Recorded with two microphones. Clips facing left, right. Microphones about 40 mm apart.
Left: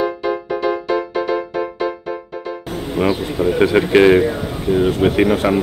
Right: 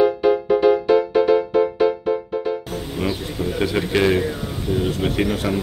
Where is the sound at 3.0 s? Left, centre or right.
Left.